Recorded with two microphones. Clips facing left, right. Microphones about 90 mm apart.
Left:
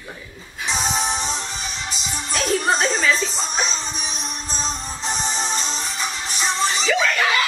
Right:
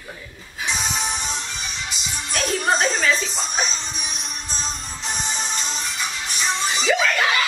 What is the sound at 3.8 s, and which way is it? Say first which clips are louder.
Music: left 3 dB; 35° left (ahead or behind).